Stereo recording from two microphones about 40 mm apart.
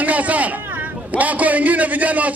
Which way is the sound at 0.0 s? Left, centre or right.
Right.